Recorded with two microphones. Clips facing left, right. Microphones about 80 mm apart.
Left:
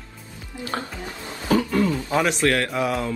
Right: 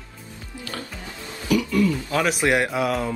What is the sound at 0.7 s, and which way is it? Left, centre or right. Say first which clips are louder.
Speech: left 6 dB; left.